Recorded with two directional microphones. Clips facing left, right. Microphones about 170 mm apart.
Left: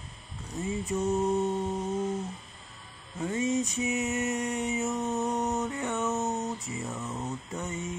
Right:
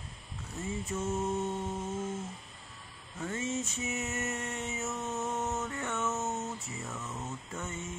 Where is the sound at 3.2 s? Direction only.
15° left (ahead or behind).